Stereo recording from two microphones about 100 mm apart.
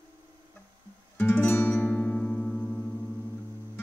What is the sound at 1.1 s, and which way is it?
Music, 20° left (ahead or behind).